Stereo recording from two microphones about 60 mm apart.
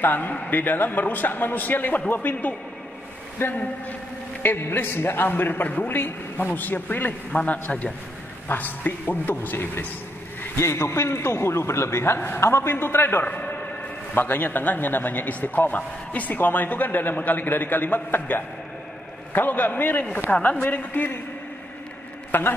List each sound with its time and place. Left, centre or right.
0.0 s speech: left
3.4 s speech: left
10.6 s a man's voice: left
13.2 s a sound: left
14.1 s a man's voice: left
22.3 s speech: left